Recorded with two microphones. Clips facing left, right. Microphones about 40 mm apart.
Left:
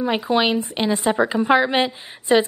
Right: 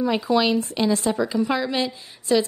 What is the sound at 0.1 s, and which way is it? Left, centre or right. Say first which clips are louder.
A woman's voice: left 3 dB; left.